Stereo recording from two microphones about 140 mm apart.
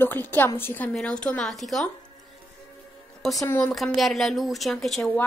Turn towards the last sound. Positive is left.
turn(degrees=0)  # may be behind; listen again after turning